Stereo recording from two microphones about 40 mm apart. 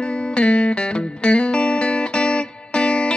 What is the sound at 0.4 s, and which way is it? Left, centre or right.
Music, left.